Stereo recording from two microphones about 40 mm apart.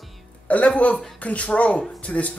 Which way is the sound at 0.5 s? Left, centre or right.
Left.